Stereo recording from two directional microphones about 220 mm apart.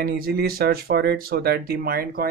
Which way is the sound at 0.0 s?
45° right (ahead or behind).